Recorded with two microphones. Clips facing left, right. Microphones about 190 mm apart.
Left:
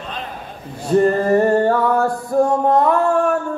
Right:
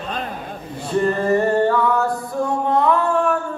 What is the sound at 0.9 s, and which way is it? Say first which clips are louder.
Music: left 4 dB; 45° left (ahead or behind).